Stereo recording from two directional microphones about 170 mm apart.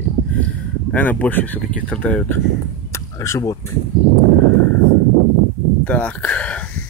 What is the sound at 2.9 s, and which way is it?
Chop, 15° left (ahead or behind).